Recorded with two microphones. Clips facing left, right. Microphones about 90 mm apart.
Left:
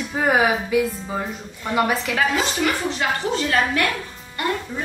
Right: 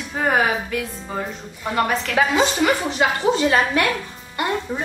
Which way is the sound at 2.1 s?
25° right (ahead or behind).